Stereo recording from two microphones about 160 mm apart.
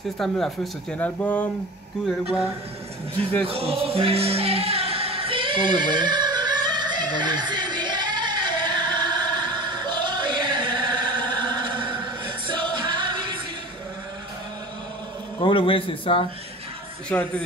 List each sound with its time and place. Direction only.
0.9 s speech: 10° left (ahead or behind)
3.4 s music: 35° right (ahead or behind)
15.4 s a man's voice: 35° left (ahead or behind)
17.1 s speech: 10° left (ahead or behind)